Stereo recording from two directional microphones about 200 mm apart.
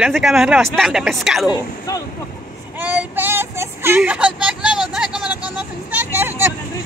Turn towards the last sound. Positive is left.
turn(degrees=-10)  # may be behind; listen again after turning